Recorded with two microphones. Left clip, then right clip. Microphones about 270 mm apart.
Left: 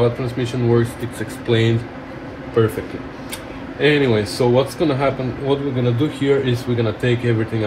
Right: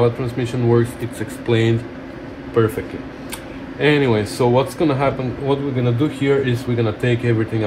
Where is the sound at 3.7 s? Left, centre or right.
Right.